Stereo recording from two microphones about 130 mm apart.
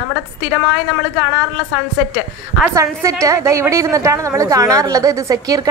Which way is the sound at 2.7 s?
25° right (ahead or behind).